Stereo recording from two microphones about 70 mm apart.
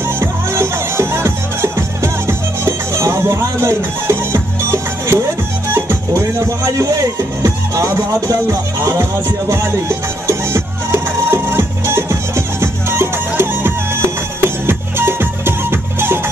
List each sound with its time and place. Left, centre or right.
0.0 s music: right
5.7 s speech: right
8.3 s speech: right
9.5 s music: right